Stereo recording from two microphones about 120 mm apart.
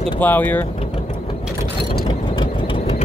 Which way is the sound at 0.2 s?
15° left (ahead or behind).